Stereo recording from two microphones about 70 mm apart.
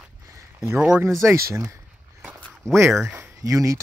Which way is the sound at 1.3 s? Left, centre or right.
Right.